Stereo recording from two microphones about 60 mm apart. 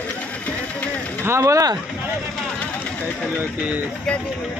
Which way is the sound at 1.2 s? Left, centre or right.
Right.